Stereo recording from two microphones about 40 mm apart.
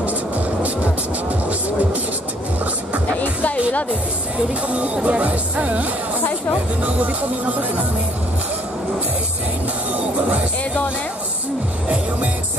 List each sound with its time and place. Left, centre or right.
4.6 s speech: right